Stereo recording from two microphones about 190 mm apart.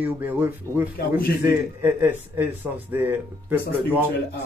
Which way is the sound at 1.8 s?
10° right (ahead or behind).